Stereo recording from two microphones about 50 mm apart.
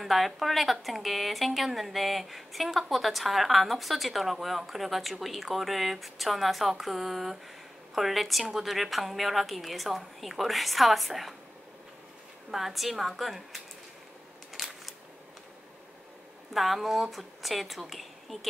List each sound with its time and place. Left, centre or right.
0.0 s speech: centre
12.4 s speech: centre
14.5 s a sound: centre
16.5 s speech: centre